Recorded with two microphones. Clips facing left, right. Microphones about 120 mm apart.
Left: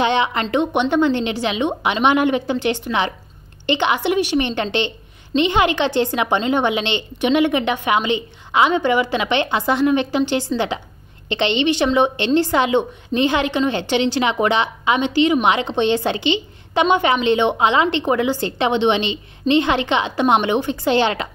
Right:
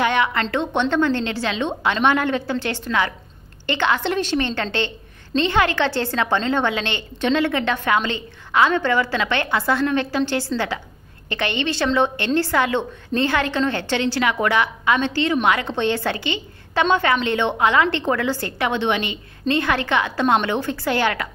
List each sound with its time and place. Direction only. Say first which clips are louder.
0.0 s a woman's voice: left 2 dB; 20° left (ahead or behind)